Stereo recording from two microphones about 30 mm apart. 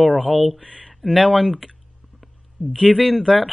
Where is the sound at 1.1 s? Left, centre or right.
Right.